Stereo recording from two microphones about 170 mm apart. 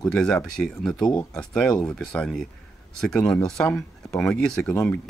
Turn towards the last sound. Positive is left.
turn(degrees=10)  # may be behind; listen again after turning